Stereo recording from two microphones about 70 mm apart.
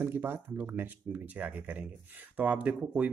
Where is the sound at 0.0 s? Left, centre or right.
Right.